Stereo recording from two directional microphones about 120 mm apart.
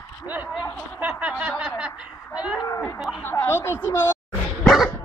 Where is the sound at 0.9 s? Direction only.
10° right (ahead or behind).